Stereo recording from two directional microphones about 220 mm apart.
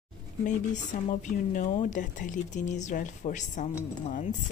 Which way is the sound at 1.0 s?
35° left (ahead or behind).